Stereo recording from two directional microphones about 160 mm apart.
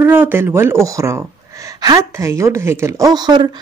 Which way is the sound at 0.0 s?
15° right (ahead or behind).